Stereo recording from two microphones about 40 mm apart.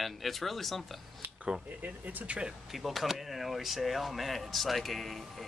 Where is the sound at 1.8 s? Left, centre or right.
Right.